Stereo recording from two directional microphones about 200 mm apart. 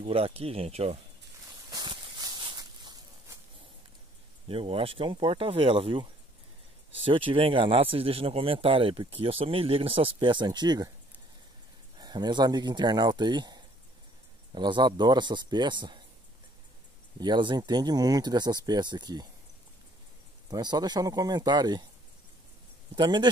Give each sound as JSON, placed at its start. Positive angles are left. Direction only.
{"t": 0.0, "sound": "speech", "side_deg": -30}
{"t": 1.7, "sound": "a sound", "side_deg": -20}
{"t": 4.5, "sound": "speech", "side_deg": -30}
{"t": 7.1, "sound": "speech", "side_deg": -25}
{"t": 12.0, "sound": "speech", "side_deg": -20}
{"t": 17.2, "sound": "speech", "side_deg": -20}
{"t": 20.4, "sound": "speech", "side_deg": -20}
{"t": 22.9, "sound": "speech", "side_deg": -20}